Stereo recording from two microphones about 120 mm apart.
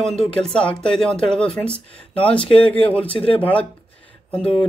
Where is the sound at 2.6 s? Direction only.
50° left (ahead or behind).